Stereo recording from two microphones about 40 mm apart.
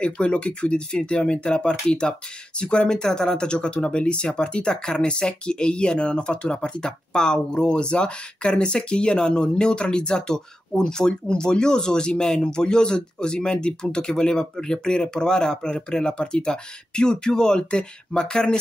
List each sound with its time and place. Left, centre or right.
0.0 s speech: left